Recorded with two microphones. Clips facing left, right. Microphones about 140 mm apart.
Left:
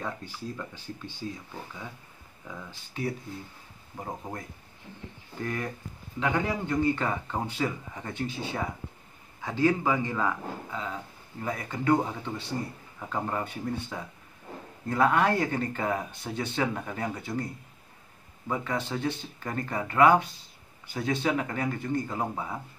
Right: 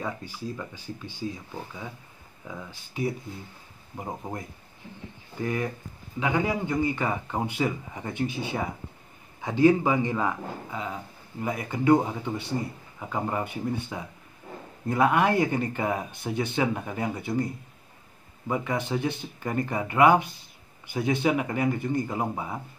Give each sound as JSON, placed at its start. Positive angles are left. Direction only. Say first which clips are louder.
{"t": 0.0, "sound": "speech", "louder": "right 2 dB", "side_deg": -10}
{"t": 2.4, "sound": "speech", "louder": "right 3 dB", "side_deg": -10}
{"t": 5.4, "sound": "speech", "louder": "right 4 dB", "side_deg": -15}
{"t": 18.5, "sound": "speech", "louder": "right 3 dB", "side_deg": -15}